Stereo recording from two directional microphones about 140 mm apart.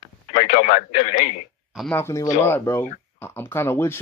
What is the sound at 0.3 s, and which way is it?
Speech, 55° left (ahead or behind).